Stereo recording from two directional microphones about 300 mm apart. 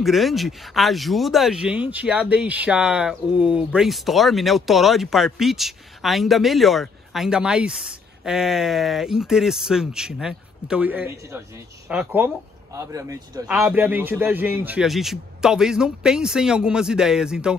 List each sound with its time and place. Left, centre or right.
0.0 s a man's voice: centre